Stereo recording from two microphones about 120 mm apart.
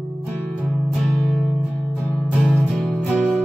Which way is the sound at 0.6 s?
Centre (ahead or behind).